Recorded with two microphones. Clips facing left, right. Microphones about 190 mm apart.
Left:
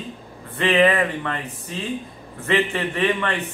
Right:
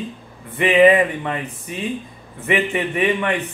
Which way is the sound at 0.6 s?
15° right (ahead or behind).